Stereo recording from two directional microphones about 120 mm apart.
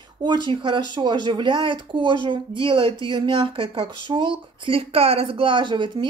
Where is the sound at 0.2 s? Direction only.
40° right (ahead or behind).